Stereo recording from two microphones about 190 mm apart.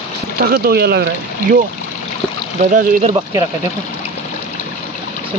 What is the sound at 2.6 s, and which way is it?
Speech, 40° right (ahead or behind).